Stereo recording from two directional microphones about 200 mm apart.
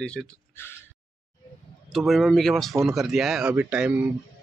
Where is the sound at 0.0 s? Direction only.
5° left (ahead or behind).